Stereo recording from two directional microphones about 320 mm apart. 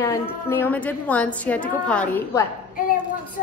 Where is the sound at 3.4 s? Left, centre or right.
Left.